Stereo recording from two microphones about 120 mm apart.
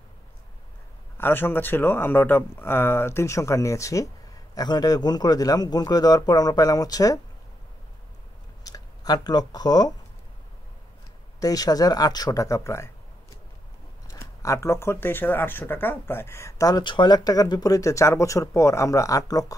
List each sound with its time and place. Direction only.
1.1 s a man's voice: 15° left (ahead or behind)
8.6 s speech: 30° left (ahead or behind)
11.3 s a man's voice: 30° left (ahead or behind)
14.0 s speech: 25° left (ahead or behind)